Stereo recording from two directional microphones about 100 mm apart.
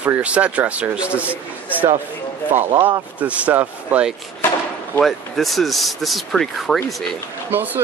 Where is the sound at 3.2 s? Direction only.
15° right (ahead or behind).